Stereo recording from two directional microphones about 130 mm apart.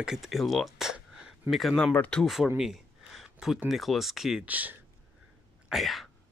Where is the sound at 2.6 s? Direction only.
Centre (ahead or behind).